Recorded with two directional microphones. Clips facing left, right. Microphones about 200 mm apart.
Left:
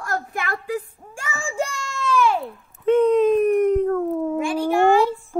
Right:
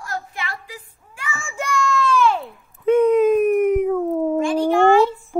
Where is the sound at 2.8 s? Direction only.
5° right (ahead or behind).